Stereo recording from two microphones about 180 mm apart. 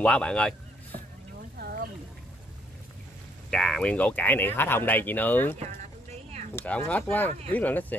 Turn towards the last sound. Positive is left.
turn(degrees=10)  # may be behind; listen again after turning